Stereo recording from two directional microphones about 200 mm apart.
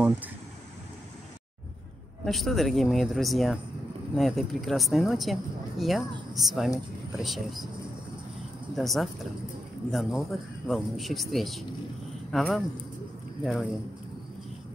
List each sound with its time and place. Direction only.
2.2 s speech: centre (ahead or behind)
8.7 s speech: centre (ahead or behind)